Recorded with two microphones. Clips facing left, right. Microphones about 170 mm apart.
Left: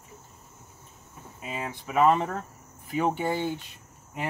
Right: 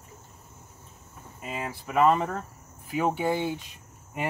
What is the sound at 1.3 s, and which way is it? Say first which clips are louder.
Speech: even; centre (ahead or behind).